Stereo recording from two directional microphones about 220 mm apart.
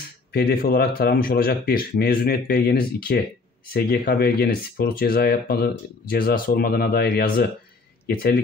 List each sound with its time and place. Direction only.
0.3 s speech: 45° left (ahead or behind)